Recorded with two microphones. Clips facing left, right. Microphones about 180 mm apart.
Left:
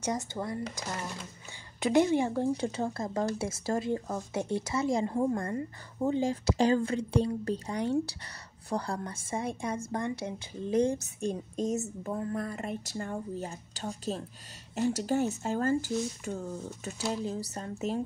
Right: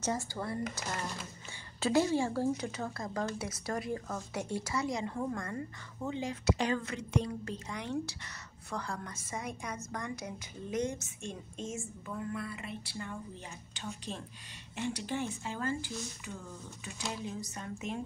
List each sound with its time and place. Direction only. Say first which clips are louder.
0.0 s speech: left 2 dB; 20° left (ahead or behind)
1.8 s a woman's voice: left 4 dB; 20° left (ahead or behind); by 18.0 s 35° left (ahead or behind)